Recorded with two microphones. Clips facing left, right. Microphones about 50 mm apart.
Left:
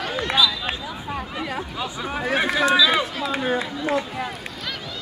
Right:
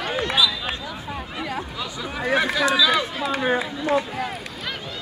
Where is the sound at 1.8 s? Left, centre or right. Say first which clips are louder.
Left 2 dB; left.